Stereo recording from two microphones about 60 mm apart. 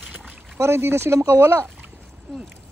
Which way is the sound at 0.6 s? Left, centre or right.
Right.